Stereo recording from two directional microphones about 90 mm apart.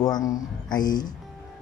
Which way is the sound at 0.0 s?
40° left (ahead or behind).